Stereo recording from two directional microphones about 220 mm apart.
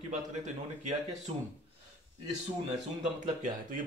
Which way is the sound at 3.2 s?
35° right (ahead or behind).